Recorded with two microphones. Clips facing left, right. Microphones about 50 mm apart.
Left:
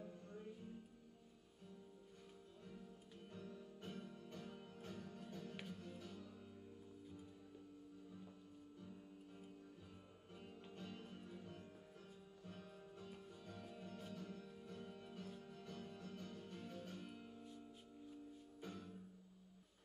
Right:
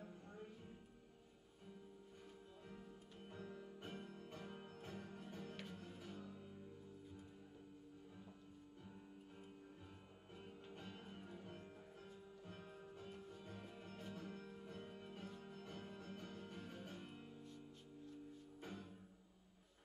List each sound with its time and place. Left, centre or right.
2.7 s music: right
10.3 s music: centre
13.4 s music: right
14.4 s music: right; by 17.2 s centre
18.6 s music: centre